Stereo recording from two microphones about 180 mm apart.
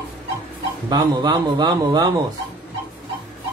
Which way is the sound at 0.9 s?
25° right (ahead or behind).